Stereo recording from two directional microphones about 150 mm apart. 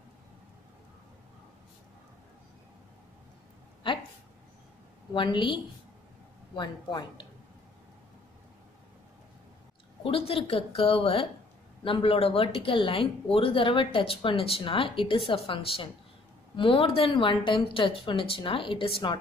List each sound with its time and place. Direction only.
5.1 s speech: 30° left (ahead or behind)
10.0 s speech: 40° left (ahead or behind)